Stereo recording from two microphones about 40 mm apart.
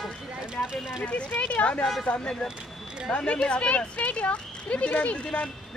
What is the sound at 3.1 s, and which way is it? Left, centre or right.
Speech, left.